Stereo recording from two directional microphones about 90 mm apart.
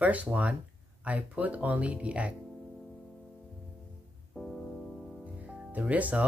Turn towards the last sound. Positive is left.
turn(degrees=-15)  # may be behind; listen again after turning